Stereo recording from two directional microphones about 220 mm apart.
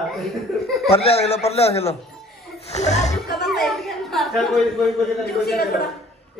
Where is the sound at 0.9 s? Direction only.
25° left (ahead or behind).